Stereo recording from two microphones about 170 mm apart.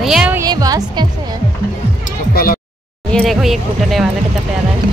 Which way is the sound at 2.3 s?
60° left (ahead or behind).